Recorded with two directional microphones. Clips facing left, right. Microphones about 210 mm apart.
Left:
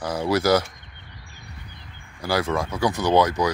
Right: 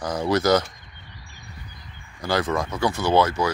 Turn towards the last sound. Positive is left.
turn(degrees=15)  # may be behind; listen again after turning